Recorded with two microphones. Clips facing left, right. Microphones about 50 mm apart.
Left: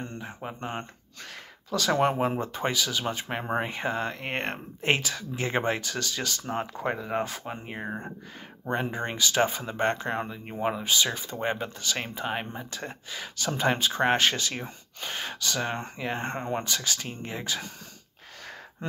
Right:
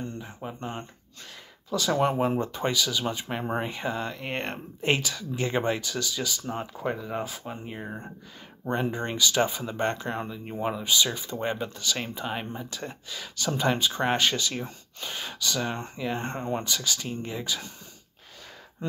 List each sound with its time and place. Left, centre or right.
0.2 s speech: left
0.6 s speech: left
1.2 s a sound: left
1.9 s speech: left
2.2 s speech: left
8.6 s speech: left